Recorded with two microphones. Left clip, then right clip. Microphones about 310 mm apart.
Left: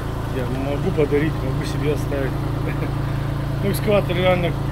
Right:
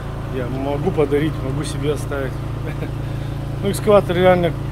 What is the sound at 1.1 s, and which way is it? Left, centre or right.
Speech, centre.